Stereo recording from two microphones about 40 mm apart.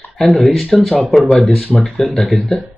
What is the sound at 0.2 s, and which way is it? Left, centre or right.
Speech, centre.